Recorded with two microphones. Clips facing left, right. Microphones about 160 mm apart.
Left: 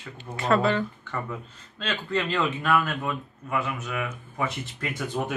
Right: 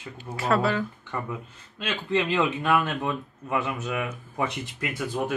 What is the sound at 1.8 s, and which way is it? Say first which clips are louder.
Speech: right 2 dB; 20° right (ahead or behind).